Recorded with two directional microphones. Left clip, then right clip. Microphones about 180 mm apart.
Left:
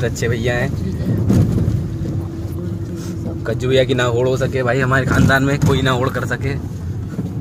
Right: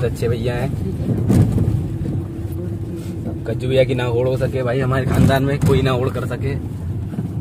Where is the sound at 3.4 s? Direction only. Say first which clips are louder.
Left 1 dB; 10° left (ahead or behind).